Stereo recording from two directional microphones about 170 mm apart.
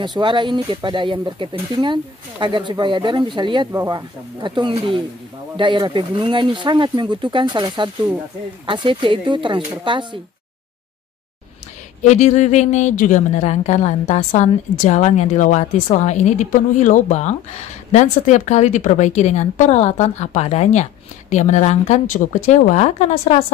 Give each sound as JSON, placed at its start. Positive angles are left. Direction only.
{"t": 0.0, "sound": "speech", "side_deg": -25}
{"t": 12.0, "sound": "a woman's voice", "side_deg": 45}